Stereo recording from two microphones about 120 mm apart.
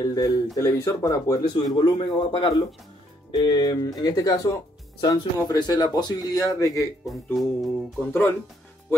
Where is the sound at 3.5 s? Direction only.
35° left (ahead or behind).